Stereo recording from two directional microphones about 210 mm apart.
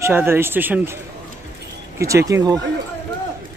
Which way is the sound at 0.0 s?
10° right (ahead or behind).